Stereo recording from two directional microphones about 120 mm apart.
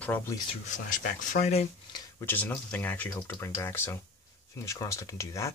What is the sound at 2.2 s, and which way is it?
Speech, 15° left (ahead or behind).